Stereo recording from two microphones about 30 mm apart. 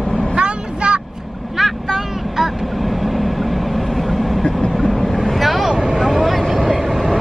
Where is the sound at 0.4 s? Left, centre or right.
Right.